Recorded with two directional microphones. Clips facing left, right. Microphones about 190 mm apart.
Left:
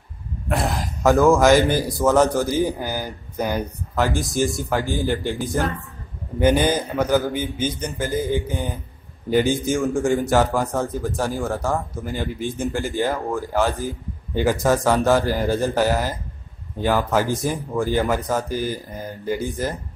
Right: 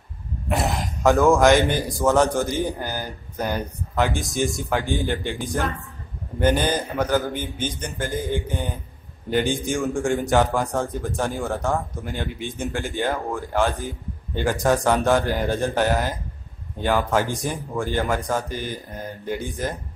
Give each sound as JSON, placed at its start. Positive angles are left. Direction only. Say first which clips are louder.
{"t": 0.5, "sound": "speech", "louder": "left 1 dB", "side_deg": 0}
{"t": 4.2, "sound": "a man's voice", "louder": "left 2 dB", "side_deg": 0}